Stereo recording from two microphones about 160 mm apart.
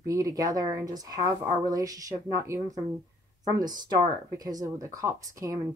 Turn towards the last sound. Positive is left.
turn(degrees=-20)  # may be behind; listen again after turning